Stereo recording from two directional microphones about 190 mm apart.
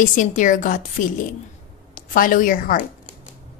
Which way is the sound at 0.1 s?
40° left (ahead or behind).